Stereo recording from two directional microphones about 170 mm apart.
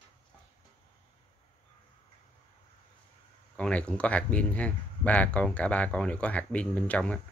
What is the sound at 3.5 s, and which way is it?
Speech, 5° left (ahead or behind).